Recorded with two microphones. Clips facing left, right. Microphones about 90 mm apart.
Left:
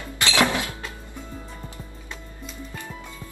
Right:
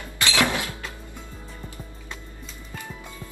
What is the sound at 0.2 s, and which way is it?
Music, 20° left (ahead or behind).